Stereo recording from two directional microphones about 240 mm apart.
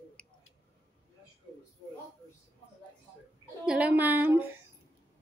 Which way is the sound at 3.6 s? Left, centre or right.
Centre.